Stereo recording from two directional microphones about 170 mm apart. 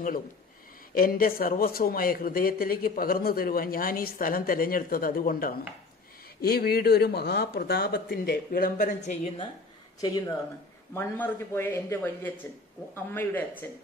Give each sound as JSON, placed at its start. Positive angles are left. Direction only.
{"t": 0.9, "sound": "speech", "side_deg": 60}
{"t": 9.9, "sound": "speech", "side_deg": 20}